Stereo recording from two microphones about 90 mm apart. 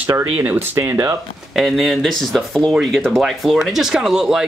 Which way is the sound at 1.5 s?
Centre (ahead or behind).